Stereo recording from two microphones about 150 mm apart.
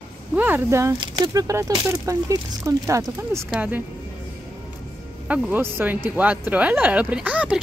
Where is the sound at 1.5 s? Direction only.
20° right (ahead or behind).